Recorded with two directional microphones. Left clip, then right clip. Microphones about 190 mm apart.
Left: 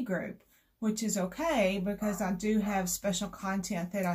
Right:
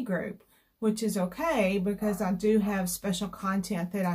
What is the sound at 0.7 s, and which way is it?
Speech, 25° right (ahead or behind).